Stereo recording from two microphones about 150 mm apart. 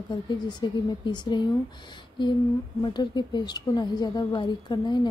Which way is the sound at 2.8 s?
30° left (ahead or behind).